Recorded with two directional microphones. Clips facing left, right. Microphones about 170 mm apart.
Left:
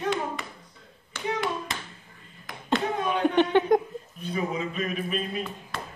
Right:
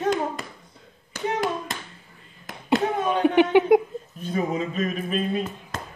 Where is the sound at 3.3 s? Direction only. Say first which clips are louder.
Right 4 dB; 10° right (ahead or behind).